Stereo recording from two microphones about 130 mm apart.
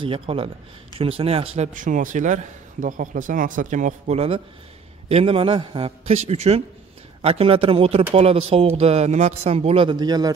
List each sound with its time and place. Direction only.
0.0 s a man's voice: 45° right (ahead or behind)
1.7 s a man's voice: 90° right
5.0 s a man's voice: 45° right (ahead or behind); by 10.3 s 30° right (ahead or behind)